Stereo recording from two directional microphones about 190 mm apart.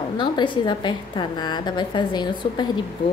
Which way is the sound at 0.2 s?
25° left (ahead or behind).